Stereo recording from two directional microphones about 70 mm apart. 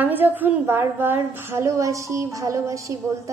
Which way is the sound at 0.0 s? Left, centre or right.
Right.